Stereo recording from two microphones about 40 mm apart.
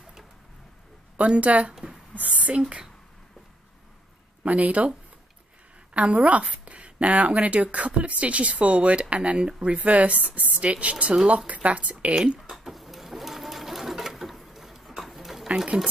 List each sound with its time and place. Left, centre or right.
1.1 s speech: right
1.7 s a sound: centre
2.1 s speech: right
4.4 s speech: right
5.9 s speech: right
12.4 s sewing machine: centre
15.4 s speech: right